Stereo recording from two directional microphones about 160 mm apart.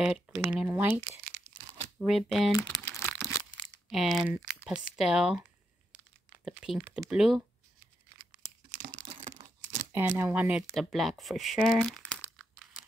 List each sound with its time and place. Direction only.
0.4 s speech: 10° right (ahead or behind)
2.7 s crumpling: 25° left (ahead or behind)
3.1 s crumpling: 5° right (ahead or behind)
3.9 s speech: centre (ahead or behind)
8.7 s crumpling: 45° right (ahead or behind)
9.1 s tearing: 50° right (ahead or behind)
9.9 s speech: 15° right (ahead or behind)
11.8 s crumpling: 5° left (ahead or behind)